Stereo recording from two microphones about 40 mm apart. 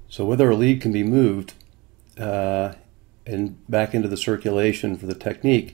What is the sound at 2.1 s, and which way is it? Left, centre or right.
Speech, centre.